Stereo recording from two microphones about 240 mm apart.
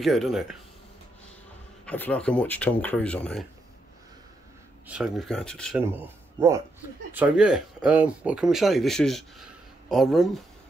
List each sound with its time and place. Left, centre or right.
0.0 s speech: centre
1.9 s speech: centre
4.8 s speech: centre